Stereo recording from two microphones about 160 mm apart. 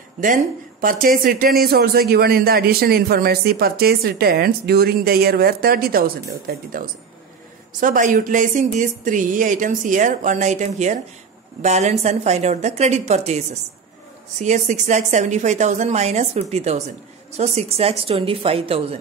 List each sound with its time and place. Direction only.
0.2 s speech: 60° right (ahead or behind)
7.8 s a woman's voice: 55° right (ahead or behind)
14.4 s a woman's voice: 50° right (ahead or behind)